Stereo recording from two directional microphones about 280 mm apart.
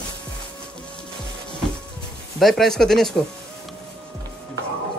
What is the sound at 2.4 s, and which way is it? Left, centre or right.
Speech, centre.